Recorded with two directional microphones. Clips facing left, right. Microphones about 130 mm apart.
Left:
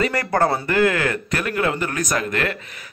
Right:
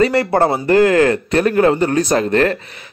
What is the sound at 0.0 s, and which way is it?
A man's voice, 30° right (ahead or behind).